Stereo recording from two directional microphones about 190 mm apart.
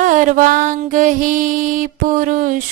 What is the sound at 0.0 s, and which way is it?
Mantra, 45° right (ahead or behind).